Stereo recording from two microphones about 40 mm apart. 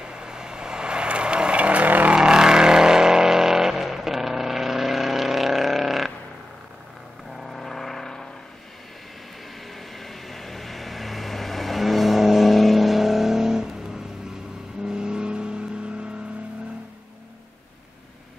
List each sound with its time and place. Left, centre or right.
0.0 s vehicle: centre; by 2.1 s right
2.1 s vehicle: centre
7.2 s vehicle: centre
9.8 s vehicle: centre; by 16.1 s right